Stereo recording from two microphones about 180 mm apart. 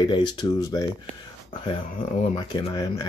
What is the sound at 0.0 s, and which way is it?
Speech, 25° left (ahead or behind).